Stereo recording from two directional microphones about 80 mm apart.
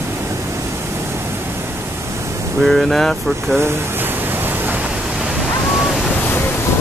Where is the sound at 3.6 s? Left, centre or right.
Right.